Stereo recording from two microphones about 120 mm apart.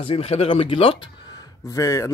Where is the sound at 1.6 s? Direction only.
25° left (ahead or behind).